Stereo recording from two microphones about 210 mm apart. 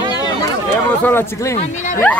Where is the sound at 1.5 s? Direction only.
35° left (ahead or behind).